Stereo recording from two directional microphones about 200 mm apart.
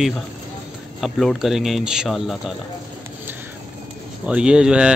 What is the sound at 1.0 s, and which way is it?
Speech, centre (ahead or behind).